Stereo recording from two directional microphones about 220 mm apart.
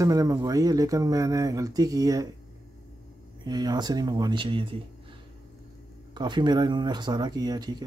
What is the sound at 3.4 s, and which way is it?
Speech, 20° right (ahead or behind).